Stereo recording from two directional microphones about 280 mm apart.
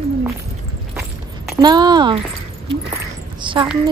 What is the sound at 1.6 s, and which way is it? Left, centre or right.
Speech, centre.